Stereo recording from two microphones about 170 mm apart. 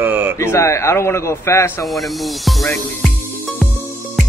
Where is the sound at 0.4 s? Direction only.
15° left (ahead or behind).